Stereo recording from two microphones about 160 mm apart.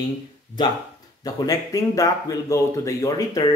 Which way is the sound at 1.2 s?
20° left (ahead or behind).